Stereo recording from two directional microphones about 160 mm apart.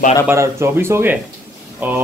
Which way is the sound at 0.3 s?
15° right (ahead or behind).